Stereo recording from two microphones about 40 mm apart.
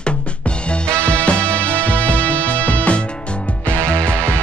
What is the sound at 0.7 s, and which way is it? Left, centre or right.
Music, left.